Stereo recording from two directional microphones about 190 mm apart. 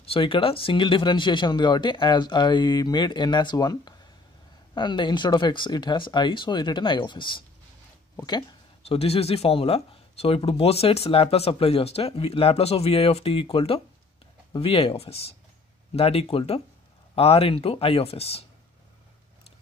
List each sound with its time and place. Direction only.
0.1 s speech: 30° left (ahead or behind)